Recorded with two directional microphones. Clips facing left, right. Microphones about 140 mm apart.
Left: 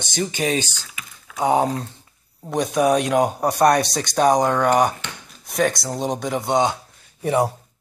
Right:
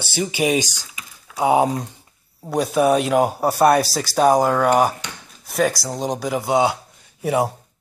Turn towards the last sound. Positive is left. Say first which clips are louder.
# even
turn(degrees=-5)  # may be behind; listen again after turning